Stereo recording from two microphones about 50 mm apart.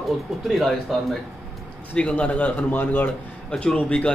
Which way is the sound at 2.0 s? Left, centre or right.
Left.